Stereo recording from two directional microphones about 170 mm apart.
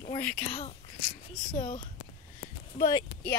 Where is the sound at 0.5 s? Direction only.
40° left (ahead or behind).